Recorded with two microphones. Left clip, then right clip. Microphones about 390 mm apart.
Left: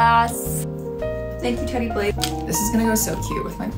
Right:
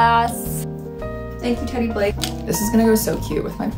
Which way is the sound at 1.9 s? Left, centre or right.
Centre.